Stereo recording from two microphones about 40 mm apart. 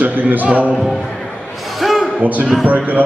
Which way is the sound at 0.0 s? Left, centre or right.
Right.